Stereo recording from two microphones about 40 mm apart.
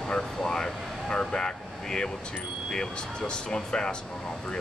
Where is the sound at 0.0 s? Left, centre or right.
Centre.